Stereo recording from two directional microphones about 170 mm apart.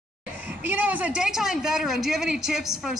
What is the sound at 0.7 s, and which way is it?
Speech, 10° right (ahead or behind).